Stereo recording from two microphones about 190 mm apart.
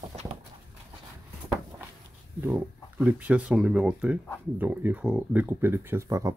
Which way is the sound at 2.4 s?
5° right (ahead or behind).